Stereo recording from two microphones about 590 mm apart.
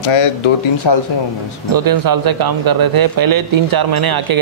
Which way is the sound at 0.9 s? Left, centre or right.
Left.